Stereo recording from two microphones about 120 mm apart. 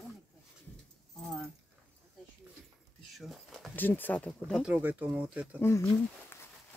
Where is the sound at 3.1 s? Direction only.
Centre (ahead or behind).